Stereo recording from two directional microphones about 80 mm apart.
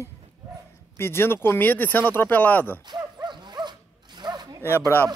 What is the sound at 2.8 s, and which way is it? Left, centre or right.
Dog, right.